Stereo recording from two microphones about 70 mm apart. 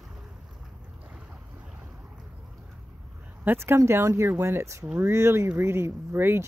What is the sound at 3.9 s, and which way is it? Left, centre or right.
Speech, right.